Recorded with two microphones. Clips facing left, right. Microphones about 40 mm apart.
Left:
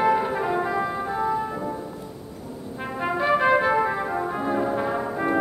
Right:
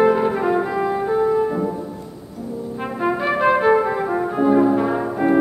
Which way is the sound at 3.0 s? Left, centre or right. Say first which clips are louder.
Right 3 dB; centre.